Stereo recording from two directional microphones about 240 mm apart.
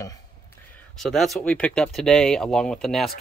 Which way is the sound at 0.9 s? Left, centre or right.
Centre.